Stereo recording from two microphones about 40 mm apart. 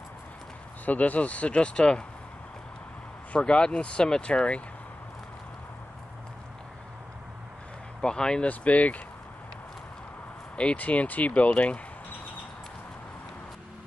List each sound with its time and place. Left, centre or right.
0.8 s speech: left
3.3 s speech: left
8.0 s speech: left
8.5 s speech: left
10.5 s a sound: left
10.8 s speech: left